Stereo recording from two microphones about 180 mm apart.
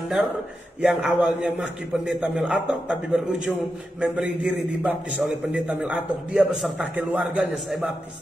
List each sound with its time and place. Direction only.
0.7 s a man's voice: 5° right (ahead or behind)